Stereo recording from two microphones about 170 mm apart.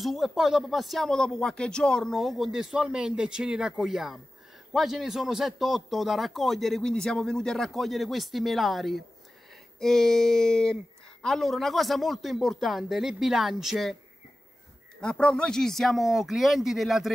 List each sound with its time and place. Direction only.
0.0 s a man's voice: centre (ahead or behind)
15.0 s a man's voice: 5° left (ahead or behind)